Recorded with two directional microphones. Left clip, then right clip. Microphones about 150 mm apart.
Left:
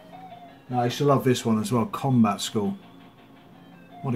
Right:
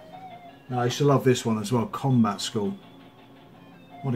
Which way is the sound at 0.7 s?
25° left (ahead or behind).